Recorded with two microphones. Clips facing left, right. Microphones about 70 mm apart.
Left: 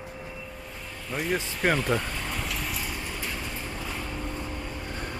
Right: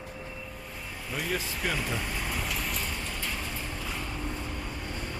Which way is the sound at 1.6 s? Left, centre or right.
Left.